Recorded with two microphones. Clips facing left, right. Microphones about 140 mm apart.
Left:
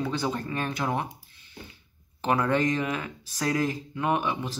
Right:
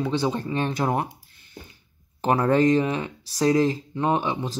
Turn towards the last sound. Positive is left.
turn(degrees=-30)  # may be behind; listen again after turning